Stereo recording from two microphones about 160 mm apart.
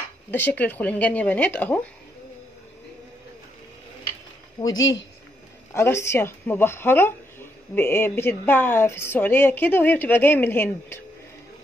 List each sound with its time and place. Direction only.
0.3 s a woman's voice: 10° left (ahead or behind)
4.6 s a woman's voice: 25° left (ahead or behind)